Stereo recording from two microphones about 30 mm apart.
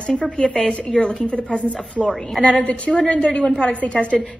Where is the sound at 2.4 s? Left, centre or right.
Left.